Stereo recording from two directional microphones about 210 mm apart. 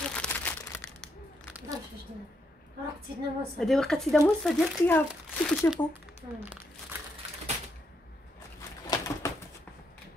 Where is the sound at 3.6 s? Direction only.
Centre (ahead or behind).